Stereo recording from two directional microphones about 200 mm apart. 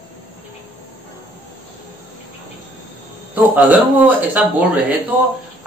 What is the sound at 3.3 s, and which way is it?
A man's voice, 10° right (ahead or behind).